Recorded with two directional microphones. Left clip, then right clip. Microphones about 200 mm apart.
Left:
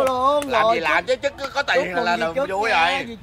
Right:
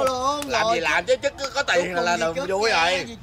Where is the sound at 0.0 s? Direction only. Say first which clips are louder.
Left 4 dB; 20° left (ahead or behind).